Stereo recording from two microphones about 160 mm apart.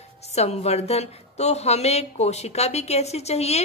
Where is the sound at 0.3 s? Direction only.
40° left (ahead or behind).